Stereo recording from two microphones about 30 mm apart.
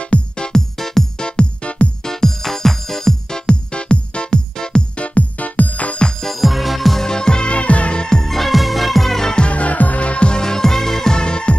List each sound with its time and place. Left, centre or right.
0.0 s music: left
0.7 s music: centre
1.2 s music: left
2.0 s music: centre; by 4.4 s left
4.9 s music: left
6.2 s music: centre
7.0 s music: left
7.5 s music: left
8.0 s music: left
8.3 s music: centre
9.4 s music: left
10.0 s music: left
10.4 s music: centre
11.1 s music: left